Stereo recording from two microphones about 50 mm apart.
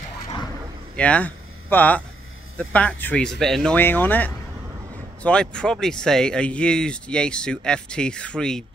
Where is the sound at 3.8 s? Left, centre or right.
Left.